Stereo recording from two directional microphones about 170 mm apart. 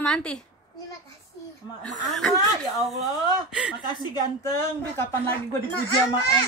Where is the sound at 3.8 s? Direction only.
20° left (ahead or behind).